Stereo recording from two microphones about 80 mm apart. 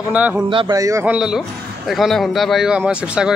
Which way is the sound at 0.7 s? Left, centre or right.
Right.